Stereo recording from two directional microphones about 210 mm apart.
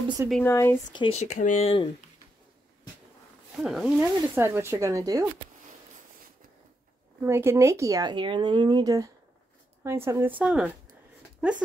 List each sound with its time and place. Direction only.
0.3 s speech: 10° left (ahead or behind)
0.9 s speech: 25° left (ahead or behind)
3.6 s speech: centre (ahead or behind)
4.4 s speech: 10° right (ahead or behind)
7.2 s speech: 10° right (ahead or behind)